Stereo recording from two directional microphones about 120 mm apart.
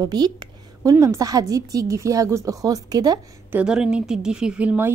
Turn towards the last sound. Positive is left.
turn(degrees=-10)  # may be behind; listen again after turning